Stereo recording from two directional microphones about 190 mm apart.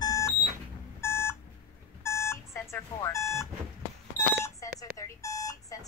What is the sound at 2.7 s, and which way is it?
Speech, 15° left (ahead or behind).